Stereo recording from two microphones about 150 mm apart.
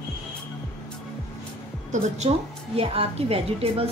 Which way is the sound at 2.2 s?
40° right (ahead or behind).